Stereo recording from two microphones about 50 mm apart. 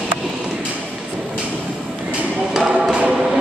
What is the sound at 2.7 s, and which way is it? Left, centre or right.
Choir, centre.